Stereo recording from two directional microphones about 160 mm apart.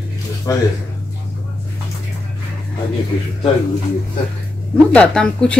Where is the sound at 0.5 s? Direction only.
20° left (ahead or behind).